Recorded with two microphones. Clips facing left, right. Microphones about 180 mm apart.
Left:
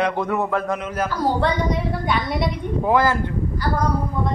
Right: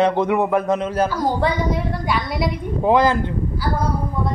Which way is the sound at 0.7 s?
30° right (ahead or behind).